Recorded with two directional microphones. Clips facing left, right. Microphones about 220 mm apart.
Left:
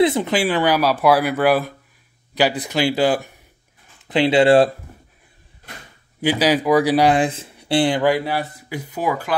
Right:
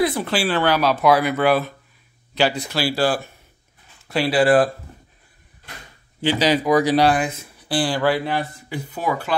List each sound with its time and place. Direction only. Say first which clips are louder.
0.0 s speech: left 4 dB; 20° left (ahead or behind)
6.2 s speech: left 1 dB; 10° left (ahead or behind)
7.2 s speech: left 4 dB; 30° left (ahead or behind); by 9.4 s 10° left (ahead or behind)